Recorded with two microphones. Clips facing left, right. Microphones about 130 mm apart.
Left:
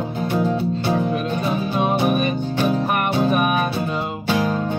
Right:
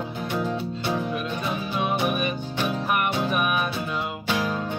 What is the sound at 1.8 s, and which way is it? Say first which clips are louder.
Music: left 5 dB; 35° left (ahead or behind).